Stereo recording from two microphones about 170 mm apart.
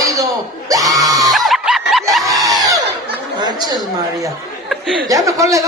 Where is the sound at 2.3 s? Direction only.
20° right (ahead or behind).